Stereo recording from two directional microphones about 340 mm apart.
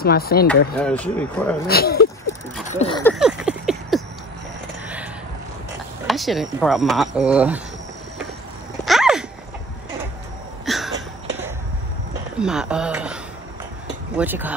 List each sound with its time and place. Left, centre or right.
0.0 s speech: left
0.7 s speech: centre
1.7 s speech: left
2.8 s a sound: centre
6.0 s speech: centre
8.8 s dog: centre
10.6 s a sound: centre
12.4 s speech: centre